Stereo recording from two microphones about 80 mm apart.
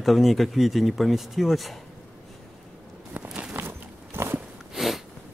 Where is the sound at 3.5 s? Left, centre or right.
Right.